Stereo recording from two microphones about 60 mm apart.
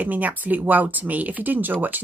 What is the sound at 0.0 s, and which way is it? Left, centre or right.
Speech, right.